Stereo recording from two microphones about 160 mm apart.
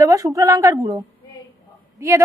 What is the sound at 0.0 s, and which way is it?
A woman's voice, 20° right (ahead or behind).